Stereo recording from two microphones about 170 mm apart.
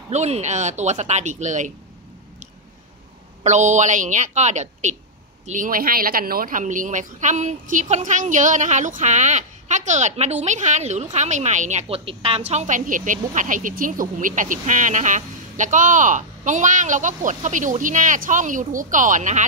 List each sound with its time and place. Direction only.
0.1 s a woman's voice: 40° right (ahead or behind)
3.4 s a woman's voice: 45° right (ahead or behind)
5.5 s a woman's voice: 55° right (ahead or behind)